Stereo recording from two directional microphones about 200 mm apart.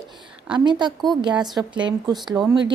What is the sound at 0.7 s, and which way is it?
A woman's voice, 20° right (ahead or behind).